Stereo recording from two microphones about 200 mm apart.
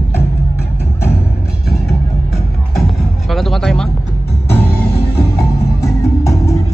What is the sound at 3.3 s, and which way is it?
Music, centre (ahead or behind).